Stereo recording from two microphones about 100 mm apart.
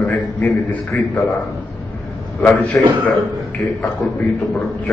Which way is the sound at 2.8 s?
10° left (ahead or behind).